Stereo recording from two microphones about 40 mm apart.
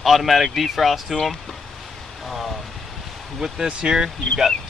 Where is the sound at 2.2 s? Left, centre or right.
Centre.